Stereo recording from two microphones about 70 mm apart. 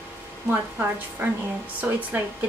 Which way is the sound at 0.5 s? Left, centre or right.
Right.